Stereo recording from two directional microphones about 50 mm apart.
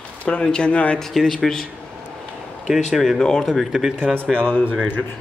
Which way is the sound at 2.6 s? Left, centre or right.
Centre.